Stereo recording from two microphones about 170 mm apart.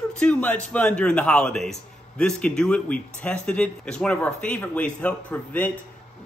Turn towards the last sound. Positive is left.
turn(degrees=10)  # may be behind; listen again after turning